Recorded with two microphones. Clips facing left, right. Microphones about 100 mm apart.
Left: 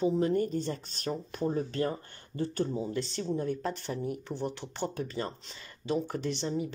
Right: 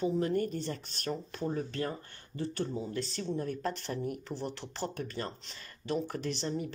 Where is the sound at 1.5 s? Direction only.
30° left (ahead or behind).